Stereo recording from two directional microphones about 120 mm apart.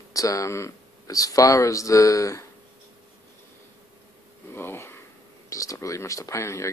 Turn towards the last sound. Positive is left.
turn(degrees=25)  # may be behind; listen again after turning